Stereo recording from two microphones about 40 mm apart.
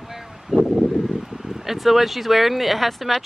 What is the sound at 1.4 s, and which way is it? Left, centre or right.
Speech, centre.